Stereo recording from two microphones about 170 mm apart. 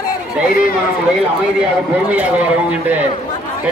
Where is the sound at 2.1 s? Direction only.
10° right (ahead or behind).